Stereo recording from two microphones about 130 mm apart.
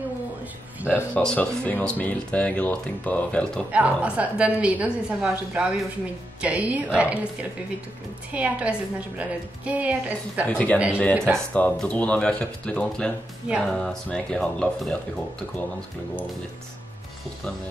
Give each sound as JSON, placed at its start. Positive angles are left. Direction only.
{"t": 1.1, "sound": "speech", "side_deg": 10}
{"t": 3.7, "sound": "a woman's voice", "side_deg": -10}
{"t": 8.3, "sound": "a woman's voice", "side_deg": -10}
{"t": 10.5, "sound": "speech", "side_deg": 10}
{"t": 11.1, "sound": "speech", "side_deg": -20}
{"t": 11.5, "sound": "speech", "side_deg": 10}